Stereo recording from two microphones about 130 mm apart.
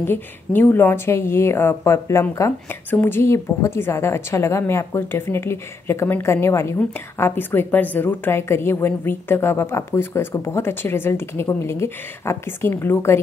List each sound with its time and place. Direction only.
0.0 s a woman's voice: 15° left (ahead or behind)